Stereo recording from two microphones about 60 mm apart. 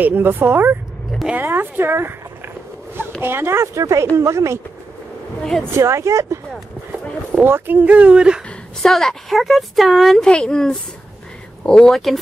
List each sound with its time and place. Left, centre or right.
0.0 s speech: right
3.2 s speech: right
3.6 s speech: right
5.8 s speech: right
7.4 s speech: right; by 8.4 s centre
8.8 s a woman's voice: centre
10.2 s speech: centre